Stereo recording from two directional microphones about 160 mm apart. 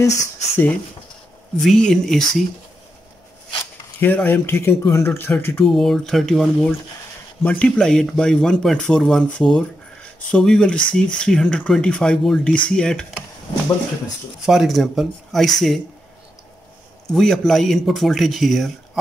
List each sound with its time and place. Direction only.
0.0 s speech: 20° left (ahead or behind)
1.6 s speech: 5° left (ahead or behind)
4.0 s speech: 10° left (ahead or behind)
5.7 s speech: centre (ahead or behind)
14.4 s speech: centre (ahead or behind)
17.1 s speech: centre (ahead or behind)